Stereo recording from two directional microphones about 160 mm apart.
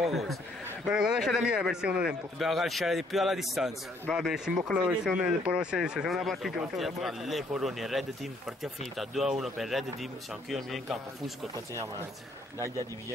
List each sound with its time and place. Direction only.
0.0 s speech: centre (ahead or behind)
11.5 s speech: 20° right (ahead or behind)